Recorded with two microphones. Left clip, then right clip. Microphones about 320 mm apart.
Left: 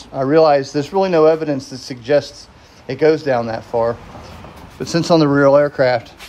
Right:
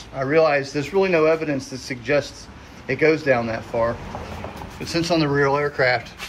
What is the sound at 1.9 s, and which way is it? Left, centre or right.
A man's voice, left.